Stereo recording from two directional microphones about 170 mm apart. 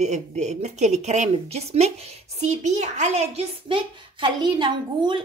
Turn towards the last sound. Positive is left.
turn(degrees=-25)  # may be behind; listen again after turning